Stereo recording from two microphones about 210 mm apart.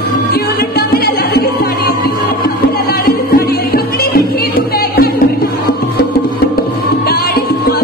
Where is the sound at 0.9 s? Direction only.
45° left (ahead or behind).